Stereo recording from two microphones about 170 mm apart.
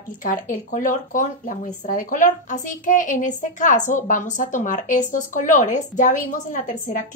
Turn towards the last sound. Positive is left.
turn(degrees=45)  # may be behind; listen again after turning